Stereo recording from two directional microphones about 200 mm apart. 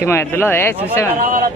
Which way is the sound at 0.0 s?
10° left (ahead or behind).